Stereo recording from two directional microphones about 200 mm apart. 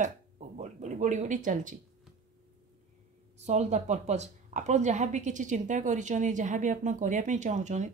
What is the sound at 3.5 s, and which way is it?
A woman's voice, 35° right (ahead or behind).